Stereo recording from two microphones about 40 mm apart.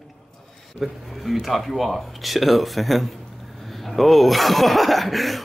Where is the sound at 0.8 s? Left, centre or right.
Centre.